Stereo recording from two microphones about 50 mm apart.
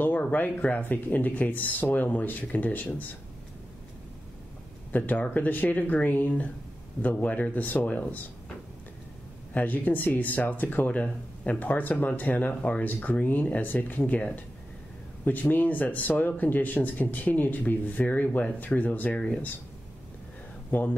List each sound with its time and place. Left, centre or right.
0.0 s speech: left
4.9 s speech: left
9.5 s speech: left
19.1 s speech: left
20.7 s speech: left